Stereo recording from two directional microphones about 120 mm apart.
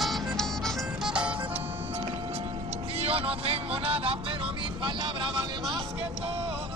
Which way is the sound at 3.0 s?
55° right (ahead or behind).